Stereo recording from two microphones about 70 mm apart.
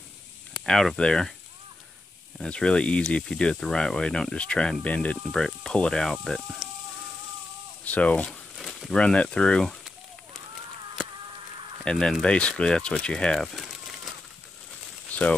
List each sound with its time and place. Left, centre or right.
0.5 s speech: centre
2.3 s speech: centre
5.3 s speech: centre
7.8 s speech: centre
8.3 s a sound: centre
8.9 s speech: centre
11.8 s speech: centre
13.5 s crumpling: centre
15.1 s a sound: centre